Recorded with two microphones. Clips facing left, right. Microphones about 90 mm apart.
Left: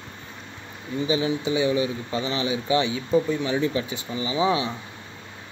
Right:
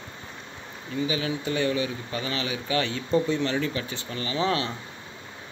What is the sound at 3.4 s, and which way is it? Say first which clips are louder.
Speech: left 3 dB; 20° left (ahead or behind).